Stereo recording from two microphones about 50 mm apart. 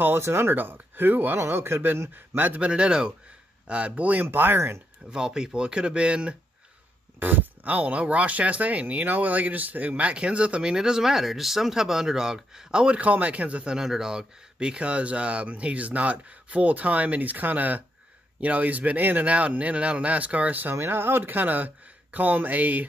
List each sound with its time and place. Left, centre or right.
0.2 s speech: right
1.4 s speech: right
2.6 s speech: right
5.1 s speech: centre
7.2 s speech: right; by 12.8 s centre
12.8 s speech: right
13.7 s speech: centre; by 20.7 s right
20.7 s speech: right